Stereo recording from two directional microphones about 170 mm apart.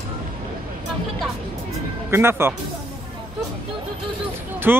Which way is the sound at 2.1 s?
15° right (ahead or behind).